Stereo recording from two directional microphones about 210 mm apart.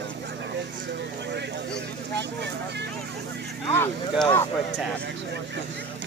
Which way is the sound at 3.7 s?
10° left (ahead or behind).